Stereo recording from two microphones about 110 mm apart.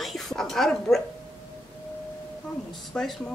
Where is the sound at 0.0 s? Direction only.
Centre (ahead or behind).